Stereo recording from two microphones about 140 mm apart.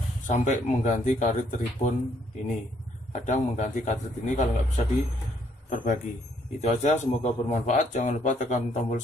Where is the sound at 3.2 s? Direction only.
60° left (ahead or behind).